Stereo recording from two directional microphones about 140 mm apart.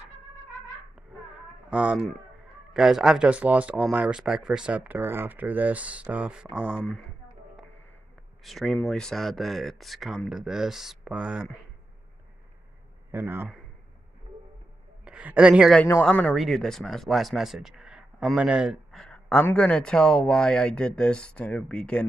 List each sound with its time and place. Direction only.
1.7 s speech: 10° right (ahead or behind)
6.8 s speech: 5° left (ahead or behind)
8.5 s speech: centre (ahead or behind)
13.1 s speech: 15° right (ahead or behind)
15.0 s speech: 5° right (ahead or behind)
15.9 s speech: 10° left (ahead or behind)